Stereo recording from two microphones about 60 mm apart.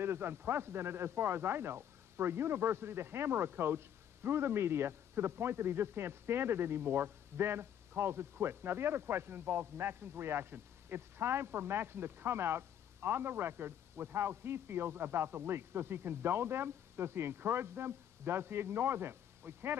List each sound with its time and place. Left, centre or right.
0.0 s a man's voice: right